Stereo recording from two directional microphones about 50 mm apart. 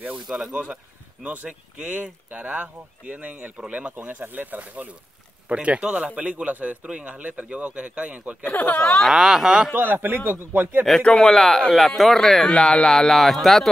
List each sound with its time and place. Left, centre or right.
0.5 s speech: right
4.2 s a man's voice: right
5.5 s speech: right
8.5 s speech: left
9.0 s speech: centre
9.8 s a man's voice: right
11.0 s speech: centre
12.5 s speech: centre
13.1 s speech: centre